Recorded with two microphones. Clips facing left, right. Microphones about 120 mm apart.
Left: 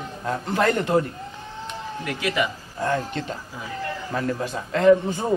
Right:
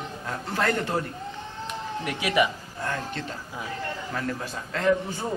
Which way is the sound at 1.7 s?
15° right (ahead or behind).